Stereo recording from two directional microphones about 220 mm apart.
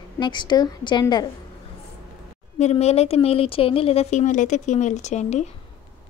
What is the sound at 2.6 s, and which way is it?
A woman's voice, 30° left (ahead or behind).